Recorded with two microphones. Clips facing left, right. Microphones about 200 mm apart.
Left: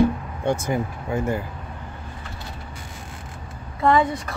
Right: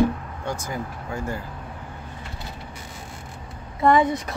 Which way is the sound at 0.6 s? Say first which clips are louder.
Left 6 dB; 20° left (ahead or behind).